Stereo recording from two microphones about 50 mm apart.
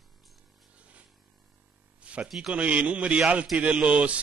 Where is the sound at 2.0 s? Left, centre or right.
Right.